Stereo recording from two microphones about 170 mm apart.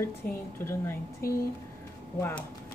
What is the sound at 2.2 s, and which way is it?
Speech, 15° left (ahead or behind).